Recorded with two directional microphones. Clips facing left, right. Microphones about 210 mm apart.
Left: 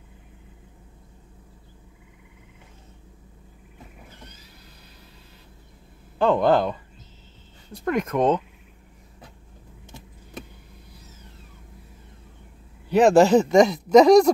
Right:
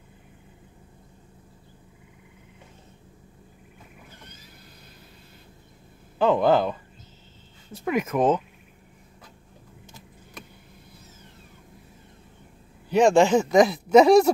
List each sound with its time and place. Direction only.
6.1 s speech: centre (ahead or behind)
12.9 s speech: 5° left (ahead or behind)
13.2 s speech: 35° left (ahead or behind)
13.5 s speech: centre (ahead or behind)